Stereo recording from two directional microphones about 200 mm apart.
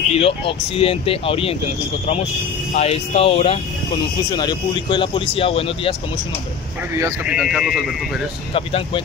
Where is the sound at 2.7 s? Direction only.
30° left (ahead or behind).